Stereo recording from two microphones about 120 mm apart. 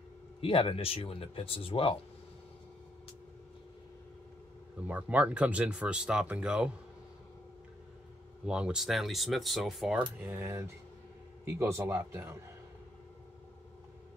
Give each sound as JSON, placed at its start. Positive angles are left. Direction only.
{"t": 0.4, "sound": "speech", "side_deg": 50}
{"t": 4.8, "sound": "speech", "side_deg": -10}
{"t": 8.5, "sound": "speech", "side_deg": -10}
{"t": 10.2, "sound": "speech", "side_deg": -20}